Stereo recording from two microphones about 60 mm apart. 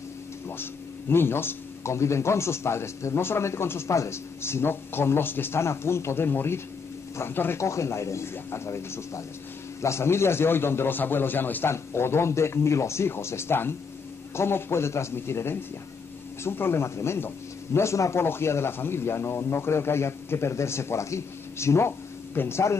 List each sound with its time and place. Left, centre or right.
1.1 s a man's voice: left
7.6 s a man's voice: left
11.7 s a man's voice: left
18.2 s a man's voice: left